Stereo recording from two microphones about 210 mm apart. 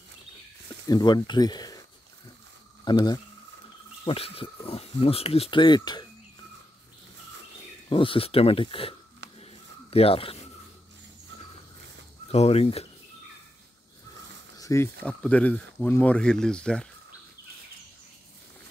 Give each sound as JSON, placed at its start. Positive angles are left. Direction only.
{"t": 0.8, "sound": "speech", "side_deg": 20}
{"t": 2.8, "sound": "speech", "side_deg": 20}
{"t": 7.9, "sound": "speech", "side_deg": 25}
{"t": 9.4, "sound": "a sound", "side_deg": 30}
{"t": 12.3, "sound": "speech", "side_deg": 30}
{"t": 14.6, "sound": "speech", "side_deg": 15}